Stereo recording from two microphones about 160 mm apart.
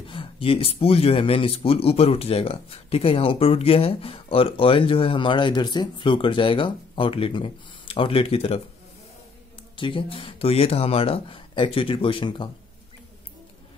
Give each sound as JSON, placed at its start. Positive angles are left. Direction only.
{"t": 0.1, "sound": "speech", "side_deg": 35}
{"t": 9.8, "sound": "speech", "side_deg": 30}